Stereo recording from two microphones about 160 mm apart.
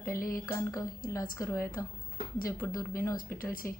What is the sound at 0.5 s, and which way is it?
Speech, 20° left (ahead or behind).